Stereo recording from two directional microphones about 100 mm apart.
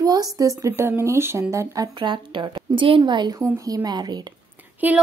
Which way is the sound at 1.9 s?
50° right (ahead or behind).